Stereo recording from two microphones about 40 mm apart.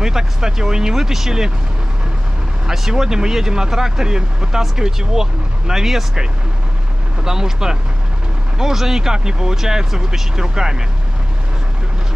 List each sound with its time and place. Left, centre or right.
0.0 s speech: centre
2.6 s speech: centre
7.2 s speech: centre